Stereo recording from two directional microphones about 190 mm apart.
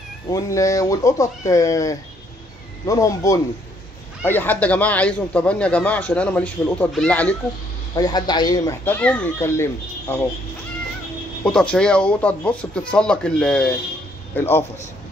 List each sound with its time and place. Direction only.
0.3 s speech: 15° left (ahead or behind)
7.9 s speech: 20° left (ahead or behind)
8.8 s speech: 10° left (ahead or behind)
11.4 s a man's voice: 5° left (ahead or behind)